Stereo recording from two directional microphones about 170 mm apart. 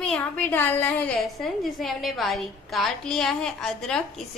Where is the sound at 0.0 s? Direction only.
5° left (ahead or behind).